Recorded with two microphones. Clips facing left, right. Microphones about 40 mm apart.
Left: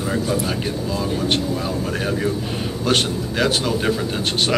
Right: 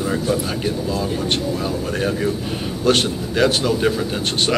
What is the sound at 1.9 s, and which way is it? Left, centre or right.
Speech, centre.